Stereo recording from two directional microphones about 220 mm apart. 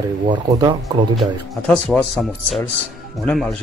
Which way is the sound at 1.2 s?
5° left (ahead or behind).